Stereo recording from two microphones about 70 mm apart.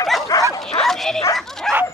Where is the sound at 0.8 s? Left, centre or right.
Centre.